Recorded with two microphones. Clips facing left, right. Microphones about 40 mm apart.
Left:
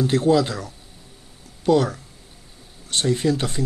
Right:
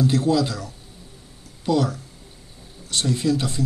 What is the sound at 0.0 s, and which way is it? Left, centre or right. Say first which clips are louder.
Speech: left 2 dB; left.